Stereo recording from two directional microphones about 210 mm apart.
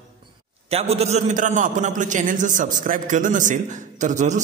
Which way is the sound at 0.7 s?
30° right (ahead or behind).